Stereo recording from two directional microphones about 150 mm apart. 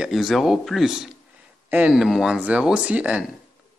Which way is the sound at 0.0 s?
Centre (ahead or behind).